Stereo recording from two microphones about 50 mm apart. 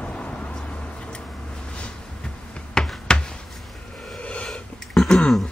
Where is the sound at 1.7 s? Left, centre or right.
Left.